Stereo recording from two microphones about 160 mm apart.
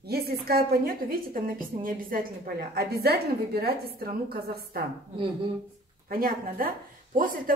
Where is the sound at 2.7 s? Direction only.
75° right (ahead or behind).